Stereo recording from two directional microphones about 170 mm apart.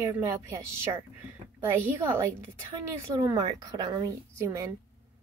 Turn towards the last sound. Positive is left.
turn(degrees=-15)  # may be behind; listen again after turning